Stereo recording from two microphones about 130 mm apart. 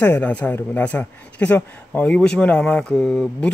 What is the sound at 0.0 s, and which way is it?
A man's voice, 15° left (ahead or behind).